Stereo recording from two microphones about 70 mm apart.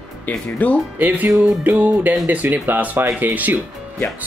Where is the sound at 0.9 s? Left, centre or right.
Right.